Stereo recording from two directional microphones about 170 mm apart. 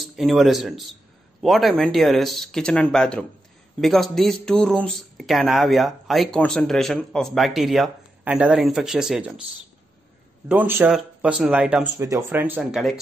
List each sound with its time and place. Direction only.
0.0 s speech: centre (ahead or behind)
10.5 s speech: 10° right (ahead or behind)